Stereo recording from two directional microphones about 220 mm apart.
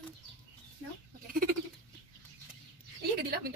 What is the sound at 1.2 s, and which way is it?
Bird, 40° right (ahead or behind).